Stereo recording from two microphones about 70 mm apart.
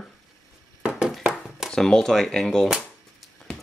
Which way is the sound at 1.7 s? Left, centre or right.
Centre.